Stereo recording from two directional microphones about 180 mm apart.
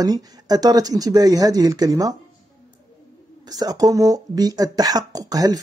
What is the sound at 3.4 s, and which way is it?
Speech, 20° right (ahead or behind).